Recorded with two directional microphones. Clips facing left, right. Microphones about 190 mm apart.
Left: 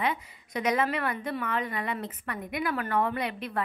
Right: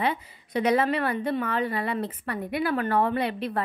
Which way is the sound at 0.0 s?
30° right (ahead or behind).